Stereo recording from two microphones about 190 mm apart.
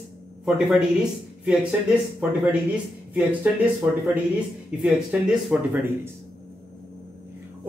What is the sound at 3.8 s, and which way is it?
Speech, 5° right (ahead or behind).